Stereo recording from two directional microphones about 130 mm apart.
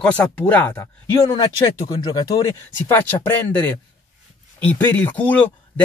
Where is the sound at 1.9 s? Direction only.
30° left (ahead or behind).